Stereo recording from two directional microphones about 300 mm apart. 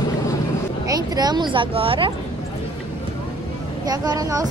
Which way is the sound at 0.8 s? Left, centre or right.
Centre.